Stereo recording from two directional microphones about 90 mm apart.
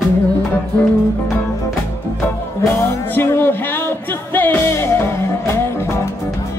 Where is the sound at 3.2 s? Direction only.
25° left (ahead or behind).